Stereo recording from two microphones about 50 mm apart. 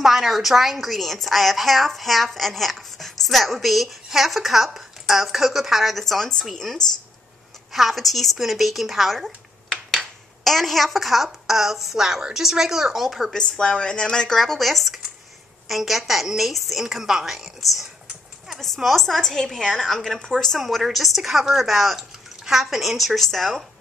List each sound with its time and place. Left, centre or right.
0.0 s a woman's voice: centre
10.4 s a woman's voice: centre
13.3 s a woman's voice: centre
14.4 s a woman's voice: centre